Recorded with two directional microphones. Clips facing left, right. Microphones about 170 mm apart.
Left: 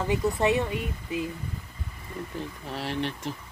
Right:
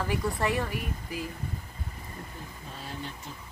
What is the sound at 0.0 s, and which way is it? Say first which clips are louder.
Speech: left 5 dB; 20° left (ahead or behind).